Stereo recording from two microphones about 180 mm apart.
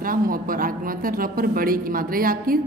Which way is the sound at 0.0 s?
50° right (ahead or behind).